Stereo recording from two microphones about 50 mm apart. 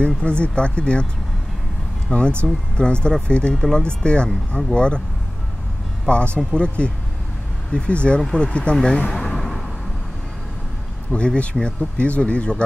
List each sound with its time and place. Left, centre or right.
0.0 s speech: left
2.1 s speech: left
6.0 s speech: left
9.3 s vehicle: centre
11.1 s speech: left